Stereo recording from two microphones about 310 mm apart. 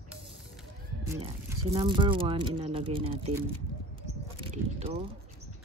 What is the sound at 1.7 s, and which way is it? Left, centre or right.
Speech, centre.